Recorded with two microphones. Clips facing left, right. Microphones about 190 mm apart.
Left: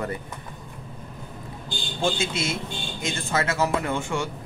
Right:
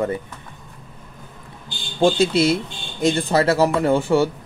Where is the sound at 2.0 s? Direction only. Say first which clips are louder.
Right 10 dB; 35° right (ahead or behind).